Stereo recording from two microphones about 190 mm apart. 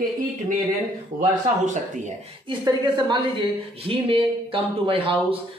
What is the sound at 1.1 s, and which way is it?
Speech, 40° right (ahead or behind).